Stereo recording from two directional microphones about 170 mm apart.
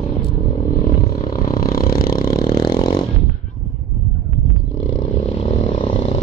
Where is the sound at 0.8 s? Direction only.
55° left (ahead or behind).